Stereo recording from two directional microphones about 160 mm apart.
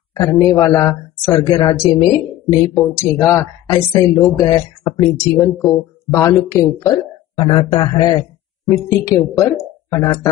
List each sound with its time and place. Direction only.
0.1 s speech: 20° left (ahead or behind)
5.4 s speech: 5° left (ahead or behind)
6.0 s speech: 20° left (ahead or behind)
7.3 s speech: 30° left (ahead or behind)
8.6 s speech: 15° left (ahead or behind)